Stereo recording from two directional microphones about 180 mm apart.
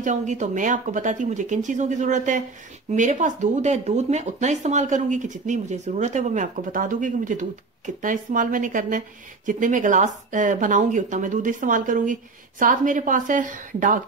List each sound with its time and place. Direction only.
0.0 s speech: 45° right (ahead or behind)